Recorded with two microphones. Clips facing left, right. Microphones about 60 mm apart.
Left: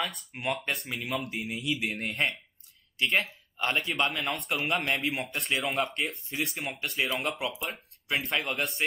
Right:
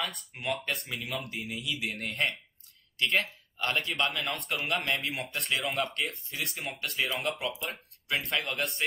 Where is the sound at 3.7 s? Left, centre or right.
Centre.